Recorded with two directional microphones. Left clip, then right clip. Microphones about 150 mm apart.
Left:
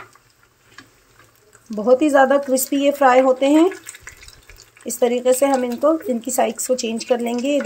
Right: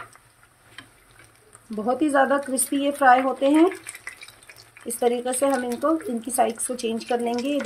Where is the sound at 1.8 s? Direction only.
45° left (ahead or behind).